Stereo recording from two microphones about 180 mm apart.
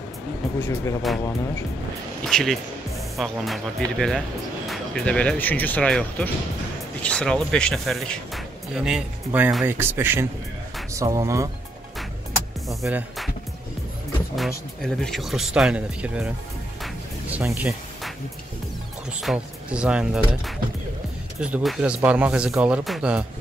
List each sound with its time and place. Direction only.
0.6 s speech: 15° left (ahead or behind)
2.2 s speech: centre (ahead or behind); by 11.5 s 15° right (ahead or behind)
12.6 s speech: centre (ahead or behind)
14.3 s speech: centre (ahead or behind)
16.8 s music: 5° right (ahead or behind)
19.2 s speech: 5° right (ahead or behind)